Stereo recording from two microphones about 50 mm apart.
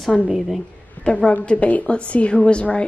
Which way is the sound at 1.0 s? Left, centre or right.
Left.